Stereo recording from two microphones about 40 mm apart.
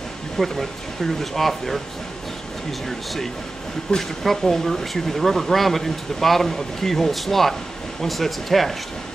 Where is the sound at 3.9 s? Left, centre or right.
Left.